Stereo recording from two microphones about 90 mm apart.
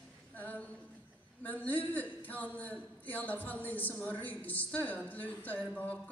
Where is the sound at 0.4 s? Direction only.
20° left (ahead or behind).